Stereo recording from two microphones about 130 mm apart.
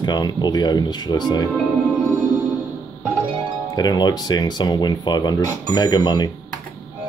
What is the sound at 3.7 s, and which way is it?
Speech, 30° left (ahead or behind).